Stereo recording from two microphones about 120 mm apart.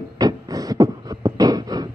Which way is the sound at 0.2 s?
30° right (ahead or behind).